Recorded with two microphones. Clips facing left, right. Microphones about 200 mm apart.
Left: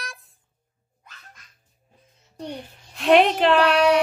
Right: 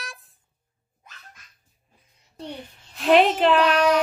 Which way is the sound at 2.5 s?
Centre (ahead or behind).